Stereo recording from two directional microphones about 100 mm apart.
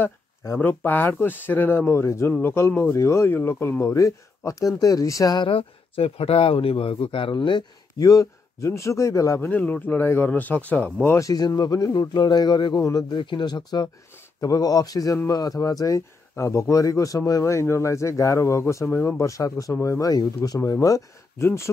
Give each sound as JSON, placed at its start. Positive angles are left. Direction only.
{"t": 0.0, "sound": "speech", "side_deg": 20}
{"t": 5.4, "sound": "speech", "side_deg": 65}
{"t": 8.0, "sound": "speech", "side_deg": 35}
{"t": 9.5, "sound": "speech", "side_deg": 15}